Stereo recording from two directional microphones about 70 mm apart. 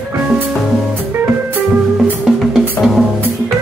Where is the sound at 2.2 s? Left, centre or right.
Centre.